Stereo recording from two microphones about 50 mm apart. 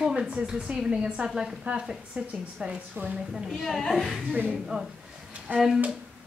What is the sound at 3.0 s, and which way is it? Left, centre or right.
Speech, right.